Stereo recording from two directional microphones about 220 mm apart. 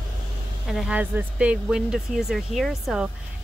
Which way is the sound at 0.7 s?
5° right (ahead or behind).